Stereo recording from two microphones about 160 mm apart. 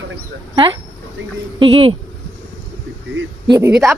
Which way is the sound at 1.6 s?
35° right (ahead or behind).